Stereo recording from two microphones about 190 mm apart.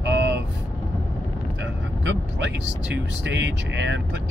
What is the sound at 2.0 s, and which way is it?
Speech, 75° right (ahead or behind).